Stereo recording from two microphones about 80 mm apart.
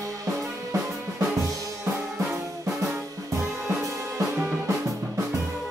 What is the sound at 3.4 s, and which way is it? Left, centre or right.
Music, right.